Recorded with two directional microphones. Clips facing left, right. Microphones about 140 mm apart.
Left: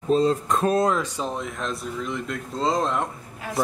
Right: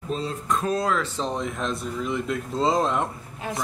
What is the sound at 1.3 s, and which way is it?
Speech, centre (ahead or behind).